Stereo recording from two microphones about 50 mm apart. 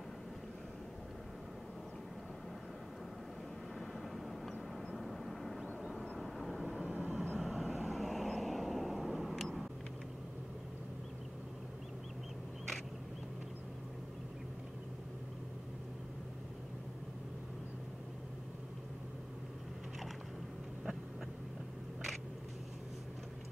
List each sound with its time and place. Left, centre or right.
4.2 s vehicle: centre
6.9 s vehicle: right
7.3 s vehicle: centre